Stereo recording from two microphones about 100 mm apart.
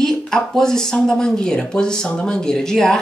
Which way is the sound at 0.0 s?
5° left (ahead or behind).